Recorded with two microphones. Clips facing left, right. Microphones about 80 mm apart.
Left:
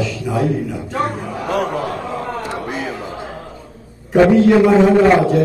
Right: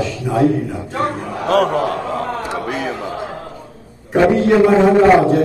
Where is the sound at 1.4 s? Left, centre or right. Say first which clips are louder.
Right 5 dB; right.